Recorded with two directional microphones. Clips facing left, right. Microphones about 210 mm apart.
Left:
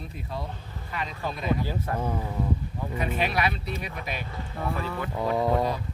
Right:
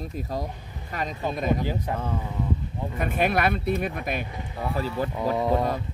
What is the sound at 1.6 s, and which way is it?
Speech, 15° right (ahead or behind).